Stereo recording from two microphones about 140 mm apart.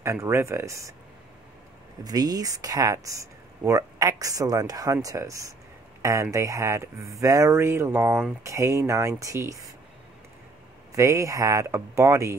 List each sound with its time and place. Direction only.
0.0 s speech: 20° right (ahead or behind)
2.0 s speech: 25° right (ahead or behind)
10.9 s speech: 25° right (ahead or behind)